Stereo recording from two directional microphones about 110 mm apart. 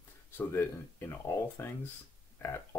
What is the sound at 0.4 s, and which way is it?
Speech, 20° left (ahead or behind).